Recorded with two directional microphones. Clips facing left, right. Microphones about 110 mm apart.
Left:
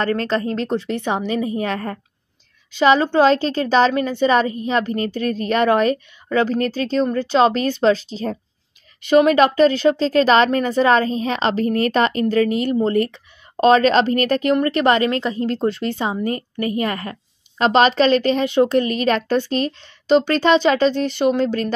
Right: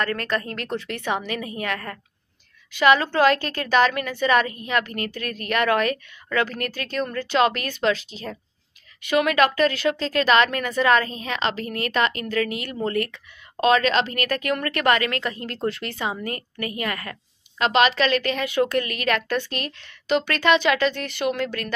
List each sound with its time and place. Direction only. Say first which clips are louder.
0.0 s speech: left 6 dB; 25° left (ahead or behind)